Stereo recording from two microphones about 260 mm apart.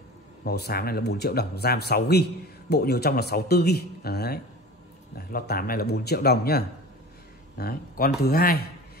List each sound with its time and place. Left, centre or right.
0.4 s speech: left